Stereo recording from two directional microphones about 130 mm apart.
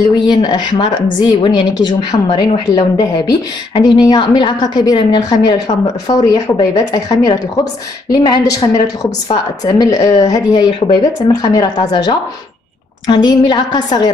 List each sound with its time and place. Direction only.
0.3 s a woman's voice: 35° left (ahead or behind)